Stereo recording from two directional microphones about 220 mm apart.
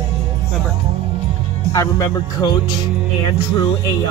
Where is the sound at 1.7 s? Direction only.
15° left (ahead or behind).